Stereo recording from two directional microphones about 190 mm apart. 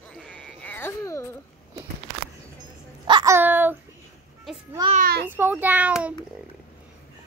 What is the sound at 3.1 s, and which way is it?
Babbling, 20° right (ahead or behind).